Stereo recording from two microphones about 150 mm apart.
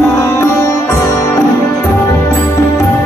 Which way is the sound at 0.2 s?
20° left (ahead or behind).